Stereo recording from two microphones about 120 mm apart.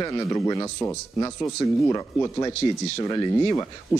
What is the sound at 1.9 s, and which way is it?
A man's voice, 25° left (ahead or behind).